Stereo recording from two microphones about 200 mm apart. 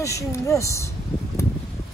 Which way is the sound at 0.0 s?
15° left (ahead or behind).